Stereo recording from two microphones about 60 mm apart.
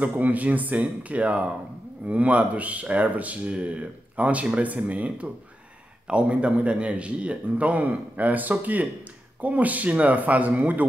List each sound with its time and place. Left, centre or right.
0.0 s a man's voice: right